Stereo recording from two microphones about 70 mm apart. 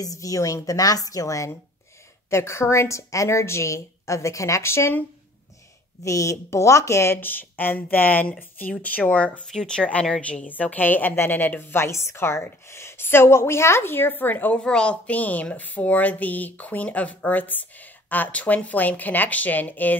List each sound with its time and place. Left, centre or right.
0.0 s a woman's voice: left
2.2 s a woman's voice: left
6.0 s a woman's voice: left
7.2 s a woman's voice: left
14.6 s a woman's voice: centre